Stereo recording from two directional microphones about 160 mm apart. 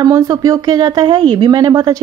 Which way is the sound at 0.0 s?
25° right (ahead or behind).